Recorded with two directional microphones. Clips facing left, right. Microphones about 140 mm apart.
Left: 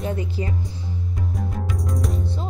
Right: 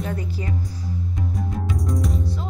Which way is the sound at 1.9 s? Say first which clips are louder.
Right 2 dB; centre (ahead or behind).